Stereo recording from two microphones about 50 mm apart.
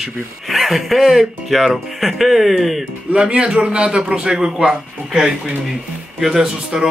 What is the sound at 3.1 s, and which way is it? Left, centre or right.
A man's voice, right.